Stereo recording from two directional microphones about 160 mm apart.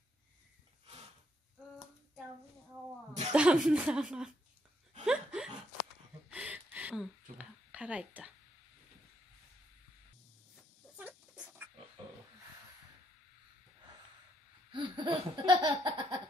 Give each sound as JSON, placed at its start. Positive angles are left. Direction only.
{"t": 3.3, "sound": "speech", "side_deg": -5}
{"t": 5.0, "sound": "a sound", "side_deg": -5}
{"t": 10.5, "sound": "goat", "side_deg": -10}
{"t": 14.7, "sound": "laughter", "side_deg": -30}